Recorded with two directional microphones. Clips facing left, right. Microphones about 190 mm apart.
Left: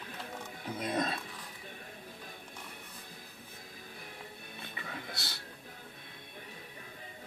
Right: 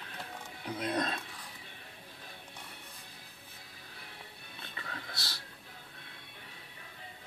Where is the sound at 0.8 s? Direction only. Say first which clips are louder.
Even; 5° left (ahead or behind).